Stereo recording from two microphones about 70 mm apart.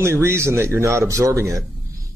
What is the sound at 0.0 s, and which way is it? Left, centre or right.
Speech, right.